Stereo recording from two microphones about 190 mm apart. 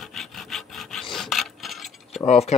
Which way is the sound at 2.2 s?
35° left (ahead or behind).